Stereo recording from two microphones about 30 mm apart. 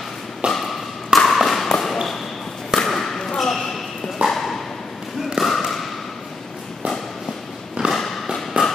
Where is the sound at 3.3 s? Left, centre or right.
Centre.